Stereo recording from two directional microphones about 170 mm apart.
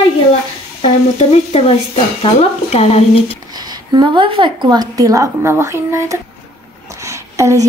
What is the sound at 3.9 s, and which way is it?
Speech, 25° right (ahead or behind).